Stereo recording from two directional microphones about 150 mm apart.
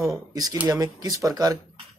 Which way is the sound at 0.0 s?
20° right (ahead or behind).